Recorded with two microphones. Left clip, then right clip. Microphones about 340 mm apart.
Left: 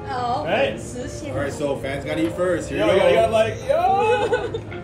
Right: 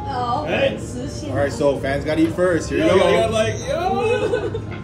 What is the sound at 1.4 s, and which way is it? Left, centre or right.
Speech, centre.